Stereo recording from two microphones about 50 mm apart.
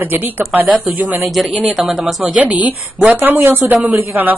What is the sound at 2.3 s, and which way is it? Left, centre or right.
A woman's voice, right.